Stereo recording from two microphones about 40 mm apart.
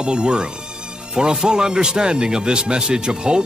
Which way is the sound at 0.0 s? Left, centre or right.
Right.